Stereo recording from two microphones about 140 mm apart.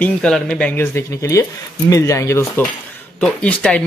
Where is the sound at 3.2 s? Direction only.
10° left (ahead or behind).